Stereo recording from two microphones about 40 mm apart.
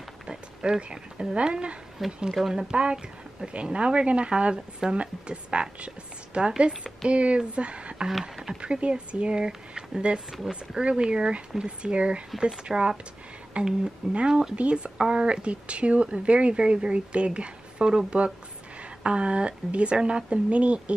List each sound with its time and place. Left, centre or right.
0.3 s speech: right
2.2 s speech: centre
2.7 s speech: right
8.1 s speech: centre
8.5 s speech: right